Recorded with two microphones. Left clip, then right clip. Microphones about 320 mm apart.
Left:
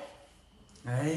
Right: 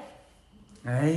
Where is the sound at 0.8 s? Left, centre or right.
Centre.